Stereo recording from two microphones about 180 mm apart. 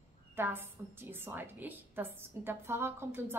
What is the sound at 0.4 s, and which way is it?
A woman's voice, 10° right (ahead or behind).